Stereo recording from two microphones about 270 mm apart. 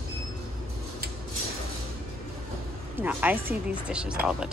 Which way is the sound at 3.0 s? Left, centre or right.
Centre.